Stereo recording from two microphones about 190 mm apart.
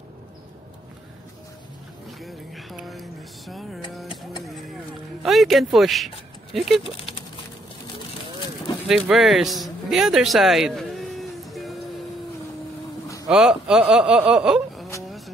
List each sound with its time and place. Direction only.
2.2 s a sound: centre (ahead or behind)
5.2 s speech: centre (ahead or behind)
6.8 s speech: 30° left (ahead or behind)
8.8 s a sound: 5° right (ahead or behind)
13.3 s speech: 5° right (ahead or behind)
15.0 s vehicle: centre (ahead or behind)